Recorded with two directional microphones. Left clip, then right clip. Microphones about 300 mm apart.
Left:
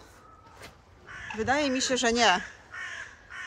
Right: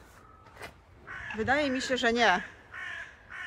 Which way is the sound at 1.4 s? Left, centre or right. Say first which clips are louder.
Left 2 dB; centre.